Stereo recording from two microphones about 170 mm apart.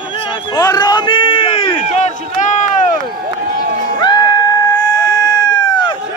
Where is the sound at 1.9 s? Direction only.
45° left (ahead or behind).